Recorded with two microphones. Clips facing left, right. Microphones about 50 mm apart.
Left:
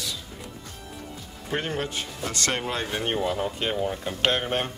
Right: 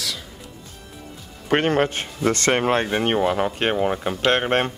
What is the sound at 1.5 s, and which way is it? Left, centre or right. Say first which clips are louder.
Speech: right 10 dB; right.